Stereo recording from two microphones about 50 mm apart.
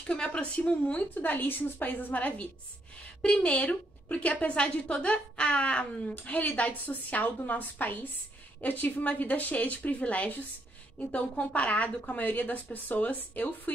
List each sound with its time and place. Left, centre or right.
0.0 s a woman's voice: centre
1.1 s a woman's voice: left
3.2 s a woman's voice: left